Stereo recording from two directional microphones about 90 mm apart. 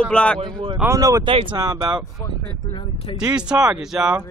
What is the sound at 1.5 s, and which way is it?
Speech, 50° right (ahead or behind).